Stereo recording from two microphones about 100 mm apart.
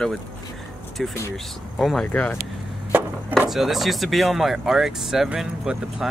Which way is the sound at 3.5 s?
Centre (ahead or behind).